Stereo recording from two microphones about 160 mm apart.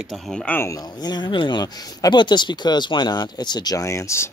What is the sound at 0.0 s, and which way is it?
Speech, centre (ahead or behind).